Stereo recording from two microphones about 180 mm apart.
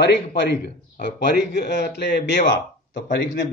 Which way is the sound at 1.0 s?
70° left (ahead or behind).